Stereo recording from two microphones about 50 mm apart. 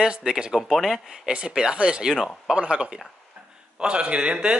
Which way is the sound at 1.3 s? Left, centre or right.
Centre.